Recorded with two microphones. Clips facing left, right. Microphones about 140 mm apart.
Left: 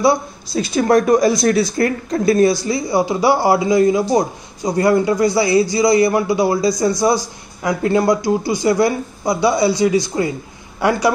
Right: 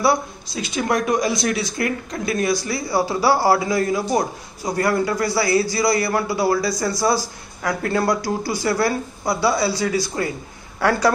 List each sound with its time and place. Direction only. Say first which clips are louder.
0.5 s speech: left 7 dB; 35° left (ahead or behind); by 11.1 s 15° left (ahead or behind)